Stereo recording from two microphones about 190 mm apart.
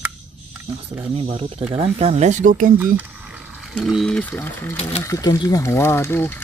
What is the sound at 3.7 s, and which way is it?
Speech, centre (ahead or behind).